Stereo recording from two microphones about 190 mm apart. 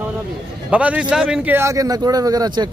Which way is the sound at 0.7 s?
5° right (ahead or behind).